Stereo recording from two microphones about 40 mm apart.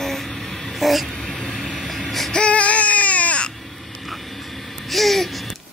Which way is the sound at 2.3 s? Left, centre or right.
Left.